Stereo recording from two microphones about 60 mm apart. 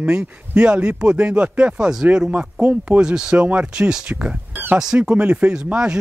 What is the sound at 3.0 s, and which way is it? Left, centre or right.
Speech, centre.